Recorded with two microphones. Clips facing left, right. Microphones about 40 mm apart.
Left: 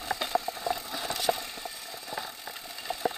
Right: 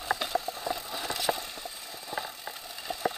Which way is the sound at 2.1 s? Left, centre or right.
Centre.